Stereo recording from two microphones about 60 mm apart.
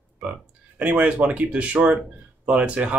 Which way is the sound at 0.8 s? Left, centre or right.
Right.